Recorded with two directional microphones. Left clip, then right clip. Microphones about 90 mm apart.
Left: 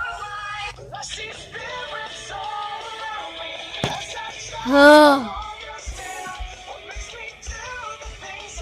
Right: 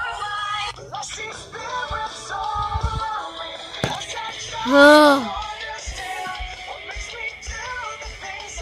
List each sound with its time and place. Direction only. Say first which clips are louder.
0.0 s music: right 3 dB; 50° right (ahead or behind)
4.6 s speech: even; 5° left (ahead or behind)
5.2 s music: right 3 dB; 55° right (ahead or behind)
6.0 s music: right 3 dB; 45° right (ahead or behind)